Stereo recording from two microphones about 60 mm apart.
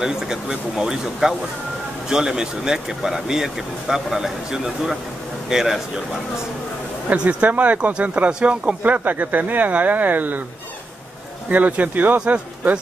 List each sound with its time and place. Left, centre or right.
0.0 s speech: centre
7.1 s speech: right
11.5 s speech: right